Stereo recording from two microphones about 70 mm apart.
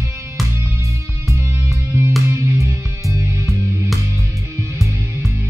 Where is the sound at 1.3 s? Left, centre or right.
Right.